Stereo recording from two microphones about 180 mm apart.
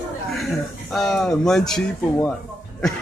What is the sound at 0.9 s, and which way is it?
Speech, centre (ahead or behind).